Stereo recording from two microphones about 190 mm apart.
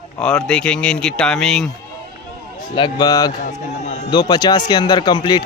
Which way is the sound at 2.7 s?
25° left (ahead or behind).